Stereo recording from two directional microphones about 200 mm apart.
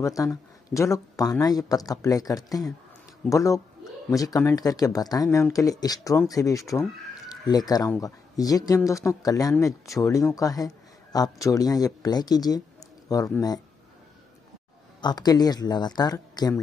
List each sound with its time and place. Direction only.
0.0 s speech: 15° left (ahead or behind)
15.0 s speech: 20° left (ahead or behind)